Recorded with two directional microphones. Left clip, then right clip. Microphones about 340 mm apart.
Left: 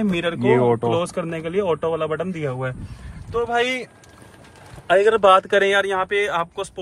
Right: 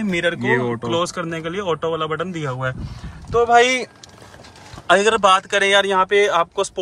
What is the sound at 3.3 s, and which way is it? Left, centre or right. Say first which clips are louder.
Speech: right 7 dB; centre.